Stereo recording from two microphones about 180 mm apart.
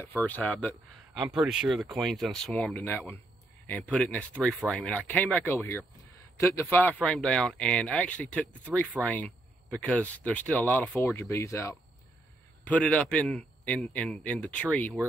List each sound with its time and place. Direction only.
0.0 s speech: 10° left (ahead or behind)
1.1 s speech: centre (ahead or behind)